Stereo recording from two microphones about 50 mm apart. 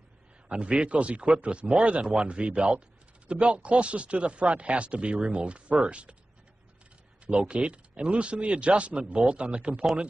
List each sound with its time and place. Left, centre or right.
0.5 s speech: right
7.2 s speech: right